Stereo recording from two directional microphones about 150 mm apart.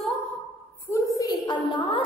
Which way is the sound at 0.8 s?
20° left (ahead or behind).